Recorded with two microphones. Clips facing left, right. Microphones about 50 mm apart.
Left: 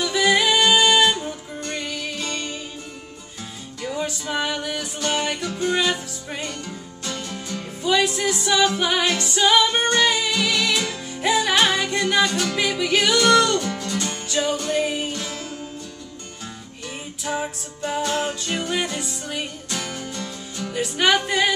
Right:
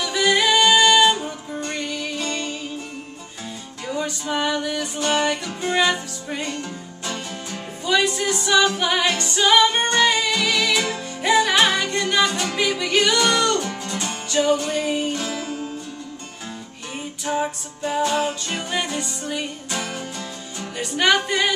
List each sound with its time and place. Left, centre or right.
0.0 s music: centre
1.1 s music: centre
3.9 s music: centre
5.5 s music: centre
5.9 s music: centre
7.8 s music: centre
13.6 s music: centre
17.4 s music: centre
19.7 s music: centre
20.7 s music: centre